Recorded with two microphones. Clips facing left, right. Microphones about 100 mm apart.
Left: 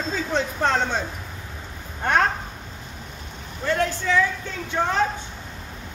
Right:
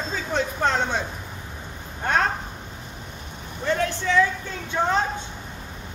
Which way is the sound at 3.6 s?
20° right (ahead or behind).